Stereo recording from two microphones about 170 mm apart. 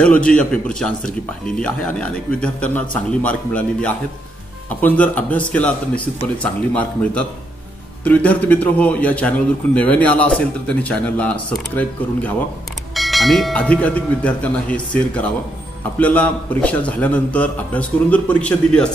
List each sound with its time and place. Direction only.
0.0 s a man's voice: 5° left (ahead or behind)